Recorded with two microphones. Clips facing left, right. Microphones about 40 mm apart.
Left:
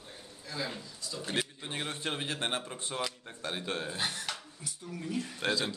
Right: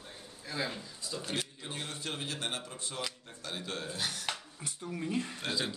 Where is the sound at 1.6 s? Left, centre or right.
Left.